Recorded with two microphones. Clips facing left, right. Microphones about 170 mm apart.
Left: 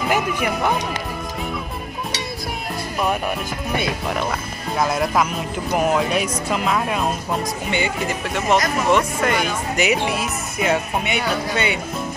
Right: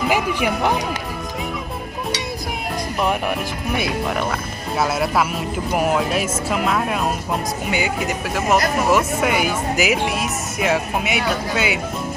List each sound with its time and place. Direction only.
0.1 s speech: 5° right (ahead or behind)
4.1 s speech: centre (ahead or behind)